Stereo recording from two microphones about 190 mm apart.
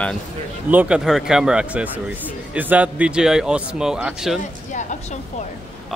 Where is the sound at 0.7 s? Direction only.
5° right (ahead or behind).